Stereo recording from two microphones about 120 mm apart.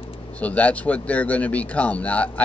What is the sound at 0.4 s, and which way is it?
A man's voice, 10° left (ahead or behind).